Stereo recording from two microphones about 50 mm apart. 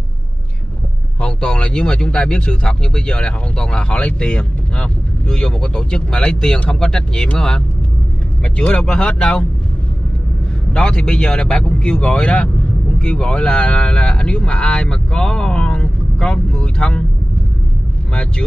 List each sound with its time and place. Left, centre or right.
1.2 s speech: centre
10.7 s speech: centre